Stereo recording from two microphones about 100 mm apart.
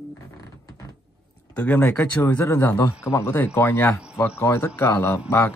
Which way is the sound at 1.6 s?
15° left (ahead or behind).